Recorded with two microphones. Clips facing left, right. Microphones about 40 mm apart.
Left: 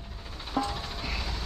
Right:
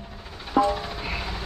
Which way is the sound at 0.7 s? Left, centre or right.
Right.